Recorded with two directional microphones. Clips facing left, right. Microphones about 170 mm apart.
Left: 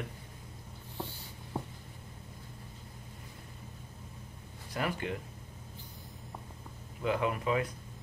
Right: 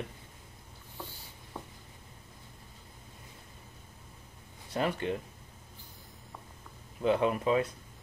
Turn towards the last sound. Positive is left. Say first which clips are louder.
# right 3 dB
turn(degrees=-25)  # may be behind; listen again after turning